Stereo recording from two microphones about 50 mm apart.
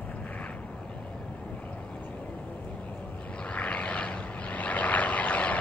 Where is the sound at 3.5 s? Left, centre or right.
Left.